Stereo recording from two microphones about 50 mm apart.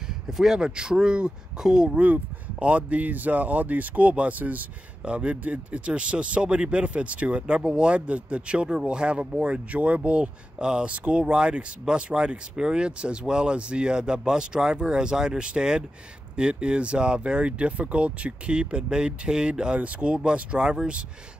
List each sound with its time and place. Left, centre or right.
0.3 s speech: centre
2.0 s speech: right
5.0 s speech: right